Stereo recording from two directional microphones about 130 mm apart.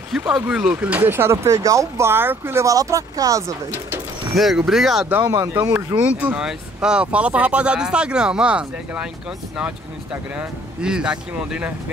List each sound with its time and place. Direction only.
0.3 s speech: 5° right (ahead or behind); by 4.4 s 25° right (ahead or behind)
4.4 s speech: centre (ahead or behind)
5.6 s speech: 25° right (ahead or behind)
5.9 s speech: 10° right (ahead or behind)
10.3 s speech: 5° right (ahead or behind)